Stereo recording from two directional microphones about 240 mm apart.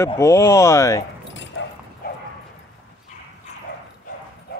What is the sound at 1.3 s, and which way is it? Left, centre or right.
Dog, left.